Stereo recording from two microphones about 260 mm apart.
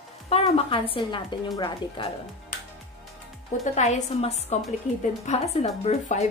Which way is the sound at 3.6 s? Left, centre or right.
Left.